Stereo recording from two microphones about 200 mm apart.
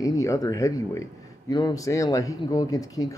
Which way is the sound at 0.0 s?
15° left (ahead or behind).